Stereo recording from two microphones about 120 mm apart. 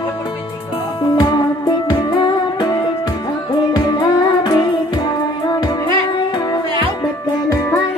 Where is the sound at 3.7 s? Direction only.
35° left (ahead or behind).